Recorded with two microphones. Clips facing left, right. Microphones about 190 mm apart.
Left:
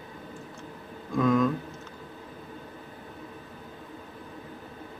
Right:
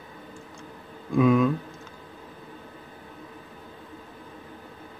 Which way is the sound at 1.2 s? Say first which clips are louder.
Right 3 dB; 5° right (ahead or behind).